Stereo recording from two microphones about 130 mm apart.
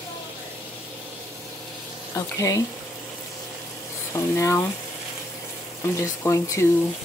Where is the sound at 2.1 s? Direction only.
25° left (ahead or behind).